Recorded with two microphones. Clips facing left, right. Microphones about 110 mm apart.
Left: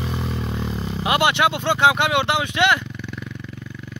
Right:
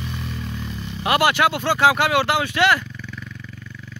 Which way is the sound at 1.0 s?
20° left (ahead or behind).